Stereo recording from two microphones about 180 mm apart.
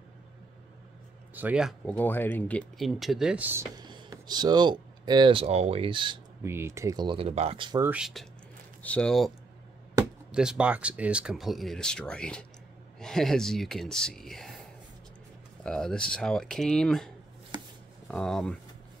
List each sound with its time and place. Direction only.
1.3 s speech: 10° right (ahead or behind)
2.0 s speech: 10° left (ahead or behind); by 3.6 s 10° right (ahead or behind)
3.8 s speech: 25° right (ahead or behind)
6.4 s speech: 15° right (ahead or behind)
7.8 s speech: 5° right (ahead or behind)
10.3 s speech: 5° right (ahead or behind)
15.6 s speech: 5° left (ahead or behind)